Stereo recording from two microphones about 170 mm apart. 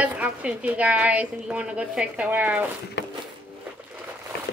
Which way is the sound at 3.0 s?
90° left.